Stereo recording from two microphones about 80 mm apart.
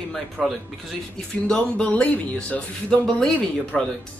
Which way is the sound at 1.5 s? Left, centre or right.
Centre.